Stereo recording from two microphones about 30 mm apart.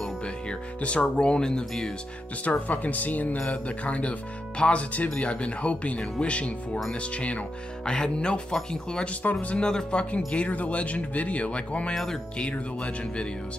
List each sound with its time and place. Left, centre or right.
0.7 s speech: left
2.4 s speech: left
3.4 s speech: left
7.8 s speech: left
9.2 s speech: left
9.6 s speech: left
9.9 s speech: left
11.9 s speech: centre
12.4 s speech: left